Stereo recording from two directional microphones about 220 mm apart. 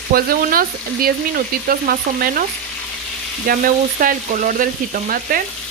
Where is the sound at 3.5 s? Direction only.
40° right (ahead or behind).